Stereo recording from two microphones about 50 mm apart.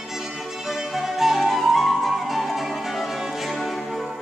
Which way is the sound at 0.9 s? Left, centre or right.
Centre.